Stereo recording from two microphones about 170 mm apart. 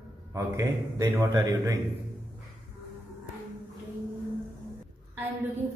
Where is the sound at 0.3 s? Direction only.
20° right (ahead or behind).